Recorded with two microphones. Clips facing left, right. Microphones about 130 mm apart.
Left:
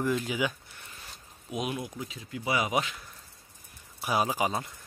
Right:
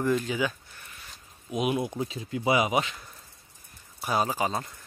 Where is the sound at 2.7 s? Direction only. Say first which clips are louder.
Right 2 dB; centre (ahead or behind).